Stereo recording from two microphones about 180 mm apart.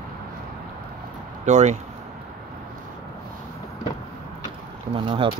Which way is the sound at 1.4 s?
40° right (ahead or behind).